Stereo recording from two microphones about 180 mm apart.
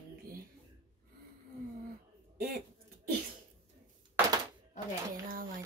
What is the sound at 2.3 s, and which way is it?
Speech, 60° right (ahead or behind).